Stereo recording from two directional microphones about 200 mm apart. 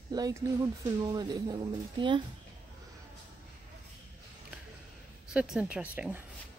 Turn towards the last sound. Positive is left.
turn(degrees=-5)  # may be behind; listen again after turning